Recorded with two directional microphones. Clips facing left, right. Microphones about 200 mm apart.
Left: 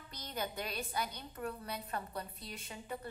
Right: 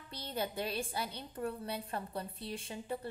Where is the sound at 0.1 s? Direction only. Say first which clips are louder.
Right 3 dB; 30° right (ahead or behind).